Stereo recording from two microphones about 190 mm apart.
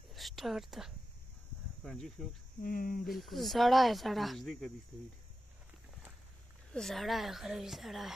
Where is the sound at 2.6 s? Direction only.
50° left (ahead or behind).